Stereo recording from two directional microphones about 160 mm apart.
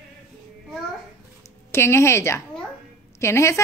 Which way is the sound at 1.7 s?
15° left (ahead or behind).